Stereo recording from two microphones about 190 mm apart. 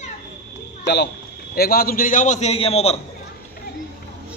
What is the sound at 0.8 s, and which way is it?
Speech, 65° left (ahead or behind).